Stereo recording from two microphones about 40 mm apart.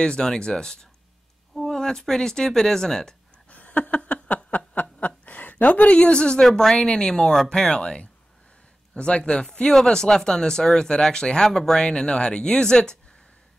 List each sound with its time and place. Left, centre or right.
0.0 s speech: left
1.5 s a sound: centre
1.8 s speech: centre
3.4 s a sound: left
5.7 s speech: left
6.6 s speech: centre